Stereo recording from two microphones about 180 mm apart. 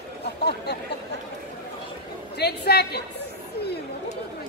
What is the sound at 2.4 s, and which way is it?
Speech, 65° left (ahead or behind).